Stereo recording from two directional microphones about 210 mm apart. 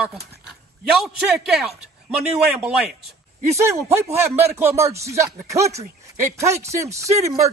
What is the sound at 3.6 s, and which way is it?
Speech, 15° right (ahead or behind).